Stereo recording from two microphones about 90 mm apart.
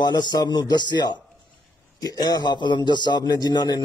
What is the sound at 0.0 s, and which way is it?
A man's voice, 55° left (ahead or behind).